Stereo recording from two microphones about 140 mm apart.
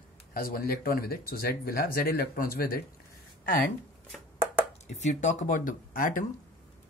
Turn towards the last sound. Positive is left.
turn(degrees=75)  # may be behind; listen again after turning